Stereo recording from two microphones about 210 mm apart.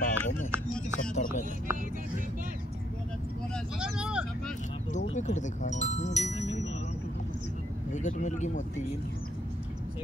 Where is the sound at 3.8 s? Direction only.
5° right (ahead or behind).